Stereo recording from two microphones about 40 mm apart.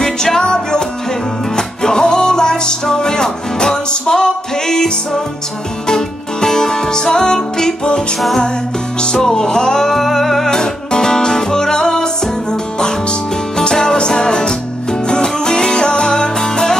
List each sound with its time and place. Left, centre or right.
0.0 s music: centre
9.0 s music: centre